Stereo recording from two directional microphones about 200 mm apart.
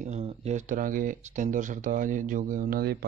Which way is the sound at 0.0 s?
35° right (ahead or behind).